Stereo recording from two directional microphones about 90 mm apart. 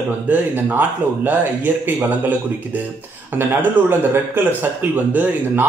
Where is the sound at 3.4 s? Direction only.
25° right (ahead or behind).